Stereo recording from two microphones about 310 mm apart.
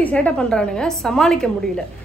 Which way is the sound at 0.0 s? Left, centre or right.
Centre.